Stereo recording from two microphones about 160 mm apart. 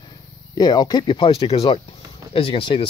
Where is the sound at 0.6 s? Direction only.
25° left (ahead or behind).